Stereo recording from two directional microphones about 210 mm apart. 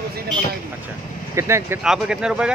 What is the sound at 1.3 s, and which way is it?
A man's voice, 15° right (ahead or behind).